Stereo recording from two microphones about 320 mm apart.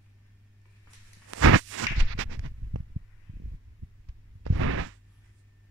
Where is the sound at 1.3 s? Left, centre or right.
Right.